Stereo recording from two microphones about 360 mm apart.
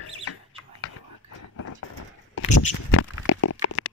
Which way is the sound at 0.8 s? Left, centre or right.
Left.